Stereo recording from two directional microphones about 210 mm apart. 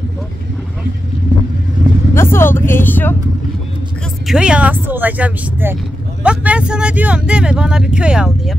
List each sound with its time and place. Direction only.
2.1 s speech: 10° left (ahead or behind)
4.3 s speech: 5° right (ahead or behind)